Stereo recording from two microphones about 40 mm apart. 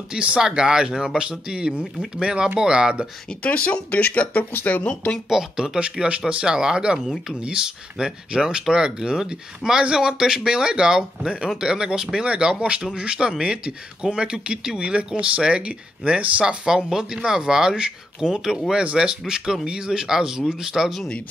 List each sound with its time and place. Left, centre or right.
0.4 s speech: centre
3.4 s speech: left
5.3 s speech: centre
5.8 s speech: right
16.4 s speech: centre